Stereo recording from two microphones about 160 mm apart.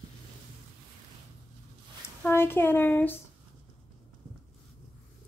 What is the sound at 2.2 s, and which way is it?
Speech, 15° left (ahead or behind).